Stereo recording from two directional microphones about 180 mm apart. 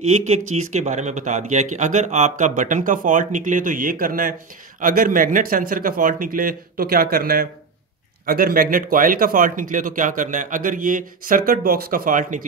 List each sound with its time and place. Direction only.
0.0 s speech: 35° right (ahead or behind)